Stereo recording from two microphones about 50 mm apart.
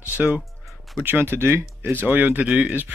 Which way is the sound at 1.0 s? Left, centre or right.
Right.